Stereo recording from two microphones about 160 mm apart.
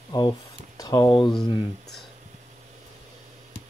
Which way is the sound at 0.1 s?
30° left (ahead or behind).